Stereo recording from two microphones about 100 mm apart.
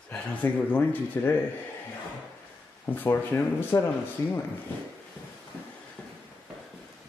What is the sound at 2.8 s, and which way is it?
Speech, 20° left (ahead or behind).